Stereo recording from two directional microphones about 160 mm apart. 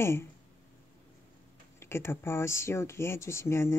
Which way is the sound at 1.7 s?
15° left (ahead or behind).